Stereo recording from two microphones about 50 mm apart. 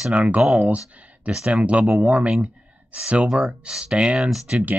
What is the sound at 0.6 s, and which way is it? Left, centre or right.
Speech, right.